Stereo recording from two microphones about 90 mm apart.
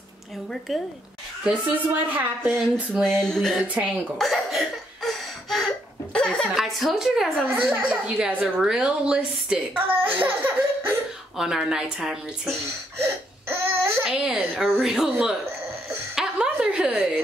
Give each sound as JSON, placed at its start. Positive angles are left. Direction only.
{"t": 0.5, "sound": "a woman's voice", "side_deg": 0}
{"t": 1.9, "sound": "a woman's voice", "side_deg": -20}
{"t": 2.9, "sound": "a woman's voice", "side_deg": 5}
{"t": 3.6, "sound": "a woman's voice", "side_deg": -15}
{"t": 4.2, "sound": "cough", "side_deg": 0}
{"t": 6.1, "sound": "a sound", "side_deg": 10}
{"t": 6.5, "sound": "a woman's voice", "side_deg": 0}
{"t": 7.4, "sound": "a woman's voice", "side_deg": -20}
{"t": 10.0, "sound": "laughter", "side_deg": -20}
{"t": 11.3, "sound": "a woman's voice", "side_deg": -5}
{"t": 13.0, "sound": "baby cry", "side_deg": -25}
{"t": 14.0, "sound": "a woman's voice", "side_deg": -10}
{"t": 16.2, "sound": "a sound", "side_deg": -10}